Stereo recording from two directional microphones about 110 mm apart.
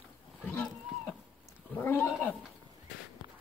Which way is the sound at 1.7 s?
20° left (ahead or behind).